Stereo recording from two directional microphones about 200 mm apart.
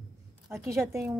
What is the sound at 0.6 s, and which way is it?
Speech, 15° right (ahead or behind).